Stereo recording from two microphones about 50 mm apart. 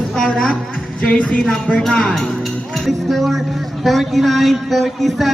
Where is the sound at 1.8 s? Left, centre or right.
Centre.